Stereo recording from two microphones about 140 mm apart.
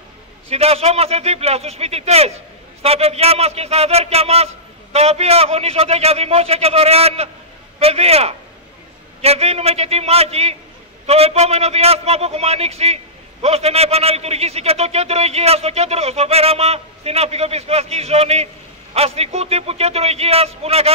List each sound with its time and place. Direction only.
0.5 s a man's voice: 45° right (ahead or behind)